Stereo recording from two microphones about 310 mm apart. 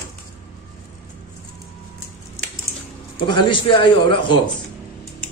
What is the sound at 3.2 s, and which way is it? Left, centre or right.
A man's voice, centre.